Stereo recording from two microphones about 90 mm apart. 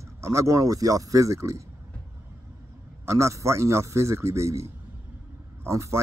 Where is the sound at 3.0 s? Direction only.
35° right (ahead or behind).